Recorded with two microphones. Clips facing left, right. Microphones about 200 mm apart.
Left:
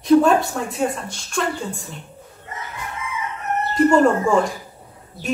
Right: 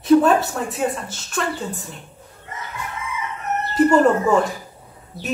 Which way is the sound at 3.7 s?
5° right (ahead or behind).